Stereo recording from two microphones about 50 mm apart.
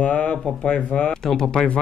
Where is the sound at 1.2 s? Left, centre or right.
Centre.